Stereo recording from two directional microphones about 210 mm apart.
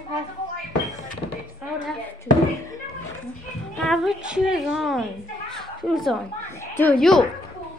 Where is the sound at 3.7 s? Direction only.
Centre (ahead or behind).